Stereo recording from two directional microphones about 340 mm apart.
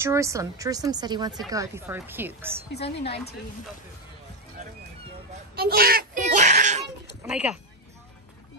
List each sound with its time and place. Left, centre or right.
0.0 s speech: centre
5.6 s a sound: right
7.2 s speech: centre